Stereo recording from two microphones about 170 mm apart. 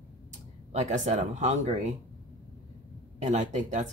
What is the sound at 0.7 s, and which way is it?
Speech, 45° right (ahead or behind).